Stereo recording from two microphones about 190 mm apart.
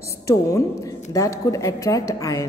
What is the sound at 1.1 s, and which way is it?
A woman's voice, 15° left (ahead or behind).